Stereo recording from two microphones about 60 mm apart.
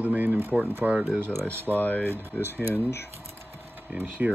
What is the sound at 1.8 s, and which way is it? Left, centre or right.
Speech, left.